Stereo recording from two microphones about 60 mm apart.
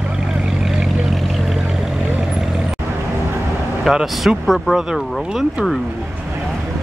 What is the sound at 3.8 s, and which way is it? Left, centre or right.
Speech, centre.